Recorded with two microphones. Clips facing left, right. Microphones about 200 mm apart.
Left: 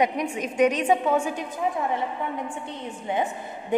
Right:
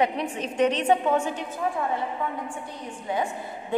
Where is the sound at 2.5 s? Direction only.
20° left (ahead or behind).